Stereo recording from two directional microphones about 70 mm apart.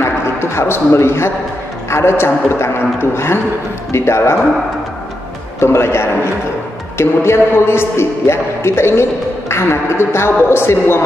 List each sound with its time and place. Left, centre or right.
0.0 s music: left
1.9 s a man's voice: left
5.6 s a man's voice: left